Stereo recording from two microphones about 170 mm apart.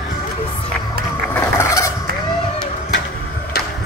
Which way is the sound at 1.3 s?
15° left (ahead or behind).